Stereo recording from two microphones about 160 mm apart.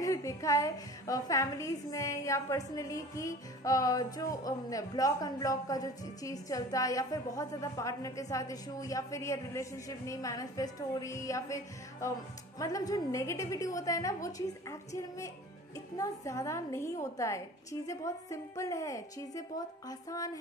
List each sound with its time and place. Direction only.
0.0 s a woman's voice: 20° left (ahead or behind)